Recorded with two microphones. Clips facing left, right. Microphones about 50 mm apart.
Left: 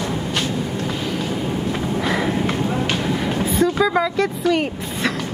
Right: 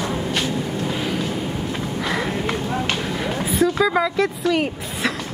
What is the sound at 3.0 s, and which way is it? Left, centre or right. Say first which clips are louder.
Vehicle: left 3 dB; centre.